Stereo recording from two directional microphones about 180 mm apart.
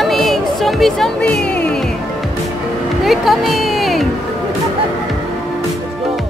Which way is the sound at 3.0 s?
Centre (ahead or behind).